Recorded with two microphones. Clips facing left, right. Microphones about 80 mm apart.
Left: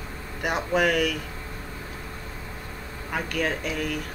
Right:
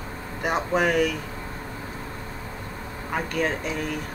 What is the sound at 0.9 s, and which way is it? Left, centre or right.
Speech, right.